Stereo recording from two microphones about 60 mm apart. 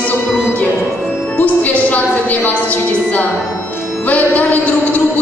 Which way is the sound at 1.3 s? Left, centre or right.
Left.